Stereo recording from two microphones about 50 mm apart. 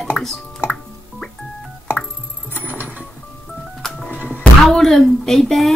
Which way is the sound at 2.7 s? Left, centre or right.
Right.